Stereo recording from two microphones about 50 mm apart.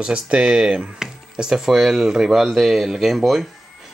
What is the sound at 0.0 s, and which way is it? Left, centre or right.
Speech, right.